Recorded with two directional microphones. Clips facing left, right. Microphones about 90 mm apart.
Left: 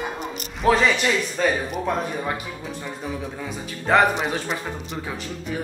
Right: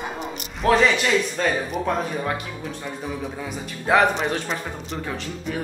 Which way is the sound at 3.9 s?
5° left (ahead or behind).